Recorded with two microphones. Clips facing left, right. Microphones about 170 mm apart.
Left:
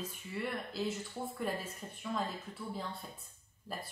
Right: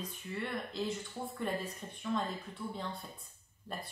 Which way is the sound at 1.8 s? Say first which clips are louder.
Even; 5° left (ahead or behind).